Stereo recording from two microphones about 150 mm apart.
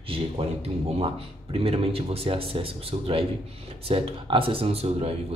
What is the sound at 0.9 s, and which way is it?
Speech, 40° right (ahead or behind).